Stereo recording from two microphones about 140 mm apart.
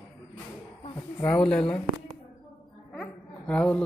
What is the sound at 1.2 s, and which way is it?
Speech, 5° left (ahead or behind).